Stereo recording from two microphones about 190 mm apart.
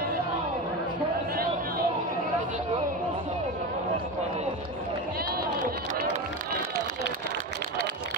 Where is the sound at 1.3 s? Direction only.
50° right (ahead or behind).